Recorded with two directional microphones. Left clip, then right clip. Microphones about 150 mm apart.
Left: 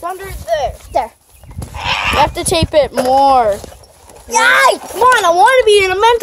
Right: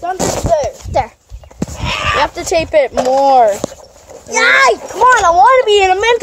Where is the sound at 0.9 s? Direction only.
15° right (ahead or behind).